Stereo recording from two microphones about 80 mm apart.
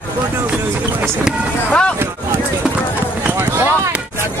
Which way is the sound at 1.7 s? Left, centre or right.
Centre.